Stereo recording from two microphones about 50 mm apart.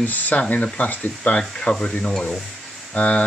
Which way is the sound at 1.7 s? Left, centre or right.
Centre.